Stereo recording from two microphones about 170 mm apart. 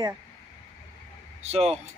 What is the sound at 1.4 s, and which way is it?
Speech, 35° right (ahead or behind).